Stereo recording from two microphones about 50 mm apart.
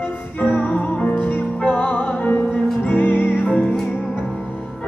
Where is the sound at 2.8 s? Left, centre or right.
Left.